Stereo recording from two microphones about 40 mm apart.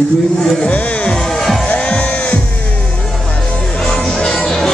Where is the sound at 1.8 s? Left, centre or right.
Left.